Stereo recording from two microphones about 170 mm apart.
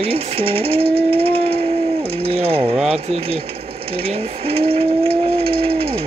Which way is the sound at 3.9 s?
35° right (ahead or behind).